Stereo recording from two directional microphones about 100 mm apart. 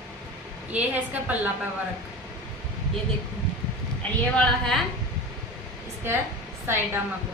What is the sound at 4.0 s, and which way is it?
Speech, 5° left (ahead or behind).